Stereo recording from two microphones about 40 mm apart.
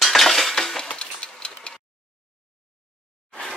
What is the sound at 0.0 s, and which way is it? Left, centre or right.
Chink, centre.